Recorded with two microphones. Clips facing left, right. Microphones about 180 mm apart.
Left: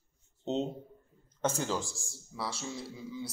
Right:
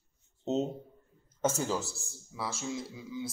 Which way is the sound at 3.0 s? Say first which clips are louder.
Right 1 dB; centre (ahead or behind).